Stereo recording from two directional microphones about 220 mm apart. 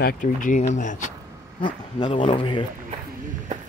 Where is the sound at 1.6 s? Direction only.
20° left (ahead or behind).